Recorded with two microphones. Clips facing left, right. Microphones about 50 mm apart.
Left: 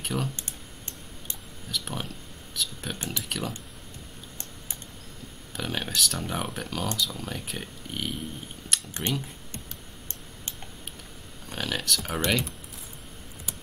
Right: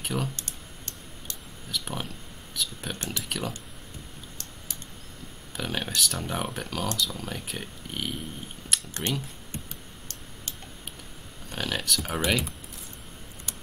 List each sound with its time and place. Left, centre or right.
0.0 s speech: centre
0.4 s typing: left
1.7 s speech: centre
5.6 s speech: centre
8.6 s a sound: centre
11.4 s speech: centre